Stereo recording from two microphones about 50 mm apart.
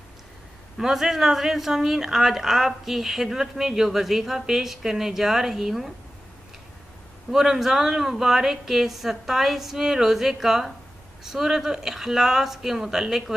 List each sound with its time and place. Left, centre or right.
0.7 s speech: centre
7.2 s speech: centre